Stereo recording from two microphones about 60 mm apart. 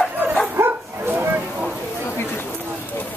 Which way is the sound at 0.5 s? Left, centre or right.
Right.